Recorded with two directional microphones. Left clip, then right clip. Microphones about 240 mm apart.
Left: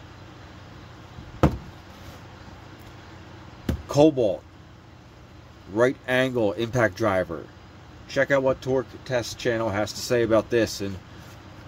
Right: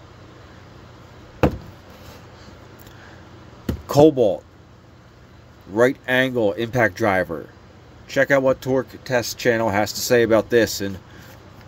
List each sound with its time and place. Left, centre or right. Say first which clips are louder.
3.9 s speech: right 5 dB; centre
5.8 s speech: right 4 dB; centre